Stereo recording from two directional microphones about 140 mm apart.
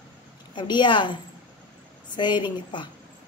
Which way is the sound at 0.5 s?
35° left (ahead or behind).